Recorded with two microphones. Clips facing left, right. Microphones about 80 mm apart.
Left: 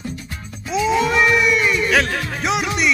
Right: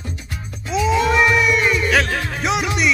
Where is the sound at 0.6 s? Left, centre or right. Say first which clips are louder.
Even; centre.